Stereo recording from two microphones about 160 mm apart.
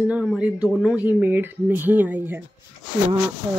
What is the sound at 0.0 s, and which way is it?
Speech, 10° right (ahead or behind).